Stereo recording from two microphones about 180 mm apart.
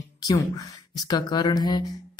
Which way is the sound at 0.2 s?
20° left (ahead or behind).